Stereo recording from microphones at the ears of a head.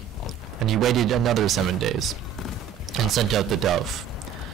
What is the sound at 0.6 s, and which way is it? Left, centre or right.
Speech, right.